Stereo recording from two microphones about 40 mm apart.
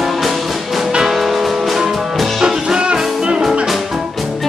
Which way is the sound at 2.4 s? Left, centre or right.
Right.